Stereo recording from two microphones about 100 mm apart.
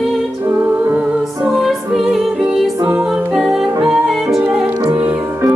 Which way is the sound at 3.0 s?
10° right (ahead or behind).